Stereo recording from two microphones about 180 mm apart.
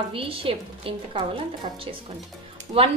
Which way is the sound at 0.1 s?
30° right (ahead or behind).